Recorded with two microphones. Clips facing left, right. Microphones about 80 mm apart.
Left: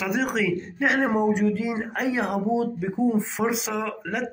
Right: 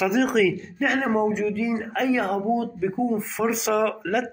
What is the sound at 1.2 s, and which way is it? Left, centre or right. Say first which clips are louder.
Speech: left 1 dB; left.